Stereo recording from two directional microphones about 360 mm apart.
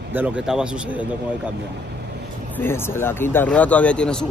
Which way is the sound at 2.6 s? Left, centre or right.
Centre.